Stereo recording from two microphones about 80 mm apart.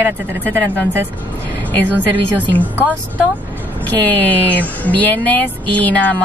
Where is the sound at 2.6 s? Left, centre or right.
Right.